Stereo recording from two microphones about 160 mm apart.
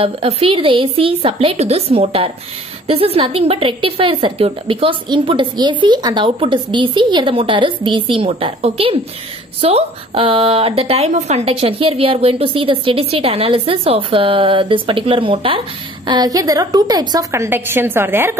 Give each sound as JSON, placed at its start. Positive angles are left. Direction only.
{"t": 0.0, "sound": "a woman's voice", "side_deg": -35}